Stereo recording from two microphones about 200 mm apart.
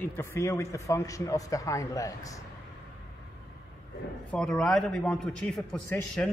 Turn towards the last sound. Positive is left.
turn(degrees=5)  # may be behind; listen again after turning